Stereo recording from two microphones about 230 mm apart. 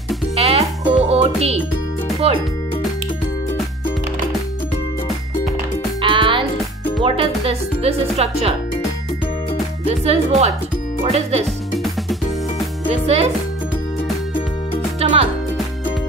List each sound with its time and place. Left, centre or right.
0.4 s music: right
2.2 s speech: right
6.0 s music: right
7.0 s speech: right
9.8 s speech: right
11.8 s music: centre
13.0 s speech: right
15.0 s music: right